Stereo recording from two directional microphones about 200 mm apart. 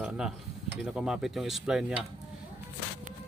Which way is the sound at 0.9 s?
5° right (ahead or behind).